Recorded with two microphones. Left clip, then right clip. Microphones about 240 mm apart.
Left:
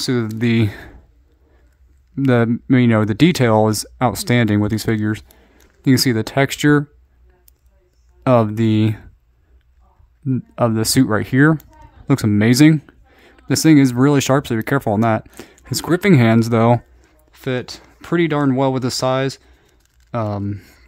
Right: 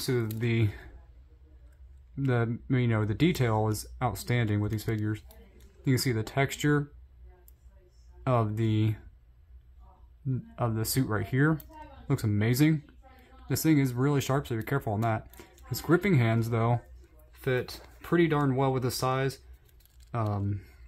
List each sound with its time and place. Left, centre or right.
0.0 s speech: left
2.1 s speech: left
8.2 s speech: left
10.2 s speech: left